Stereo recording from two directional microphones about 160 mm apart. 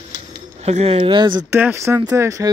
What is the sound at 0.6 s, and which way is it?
Speech, 40° right (ahead or behind).